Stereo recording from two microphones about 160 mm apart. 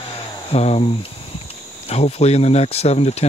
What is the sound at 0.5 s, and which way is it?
Speech, 40° left (ahead or behind).